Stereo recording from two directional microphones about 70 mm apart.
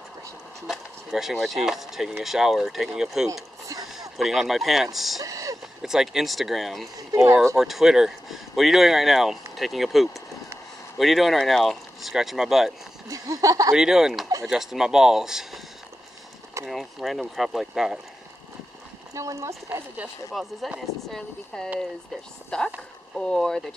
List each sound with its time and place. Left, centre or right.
0.7 s speech: centre
5.2 s a sound: right
5.8 s speech: centre
13.1 s speech: right
13.7 s speech: centre
16.6 s speech: centre
19.1 s speech: right
20.3 s speech: centre
21.5 s speech: centre